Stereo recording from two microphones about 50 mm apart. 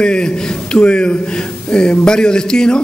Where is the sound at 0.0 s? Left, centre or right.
Centre.